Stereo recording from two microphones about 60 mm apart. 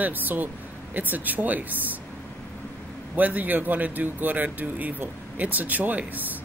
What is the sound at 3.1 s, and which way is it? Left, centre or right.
Speech, right.